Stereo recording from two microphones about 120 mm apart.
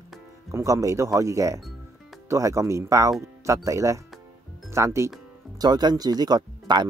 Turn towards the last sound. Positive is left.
turn(degrees=-35)  # may be behind; listen again after turning